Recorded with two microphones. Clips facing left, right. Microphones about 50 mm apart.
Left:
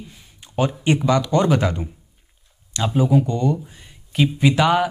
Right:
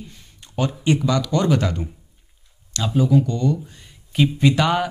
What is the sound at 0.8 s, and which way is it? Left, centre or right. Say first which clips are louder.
Speech: left 1 dB; left.